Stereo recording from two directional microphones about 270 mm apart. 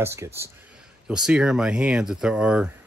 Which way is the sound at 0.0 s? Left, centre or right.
Centre.